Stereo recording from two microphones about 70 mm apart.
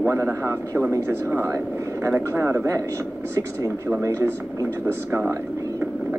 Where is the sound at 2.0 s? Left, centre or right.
Right.